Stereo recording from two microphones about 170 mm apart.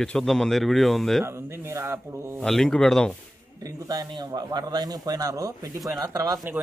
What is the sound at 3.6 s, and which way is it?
A man's voice, 20° right (ahead or behind).